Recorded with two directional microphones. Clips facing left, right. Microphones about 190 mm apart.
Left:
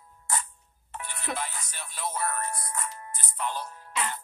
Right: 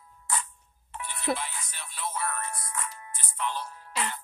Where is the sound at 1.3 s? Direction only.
45° left (ahead or behind).